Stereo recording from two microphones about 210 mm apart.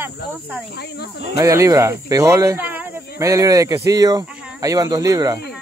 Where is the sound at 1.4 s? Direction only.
15° right (ahead or behind).